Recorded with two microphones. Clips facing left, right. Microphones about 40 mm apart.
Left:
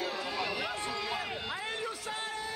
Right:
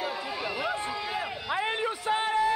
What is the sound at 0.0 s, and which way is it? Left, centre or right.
Chatter, centre.